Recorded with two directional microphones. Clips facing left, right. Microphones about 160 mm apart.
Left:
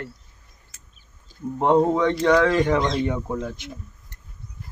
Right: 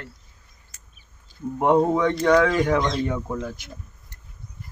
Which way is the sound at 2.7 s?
15° left (ahead or behind).